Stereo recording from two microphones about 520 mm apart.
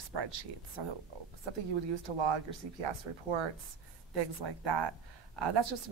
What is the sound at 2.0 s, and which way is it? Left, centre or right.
Speech, right.